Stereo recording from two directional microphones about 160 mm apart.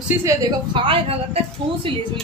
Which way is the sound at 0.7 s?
35° right (ahead or behind).